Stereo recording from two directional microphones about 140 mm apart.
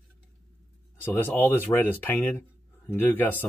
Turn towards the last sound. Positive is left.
turn(degrees=15)  # may be behind; listen again after turning